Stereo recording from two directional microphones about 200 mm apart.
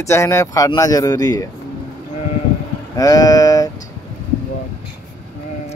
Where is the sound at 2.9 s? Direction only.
20° left (ahead or behind).